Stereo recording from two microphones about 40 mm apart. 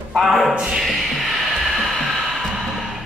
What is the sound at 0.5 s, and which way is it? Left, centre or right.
Speech, right.